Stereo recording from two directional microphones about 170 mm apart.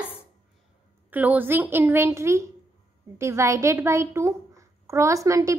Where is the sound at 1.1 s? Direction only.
10° right (ahead or behind).